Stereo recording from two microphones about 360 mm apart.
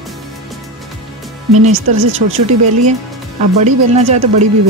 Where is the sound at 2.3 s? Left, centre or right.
Centre.